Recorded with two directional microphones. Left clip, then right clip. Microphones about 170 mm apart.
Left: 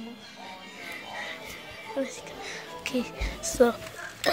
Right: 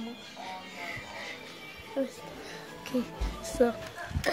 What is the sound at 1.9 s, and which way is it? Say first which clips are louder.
Music: left 1 dB; 5° right (ahead or behind).